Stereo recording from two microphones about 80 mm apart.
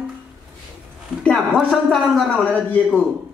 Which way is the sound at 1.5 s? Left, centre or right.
Centre.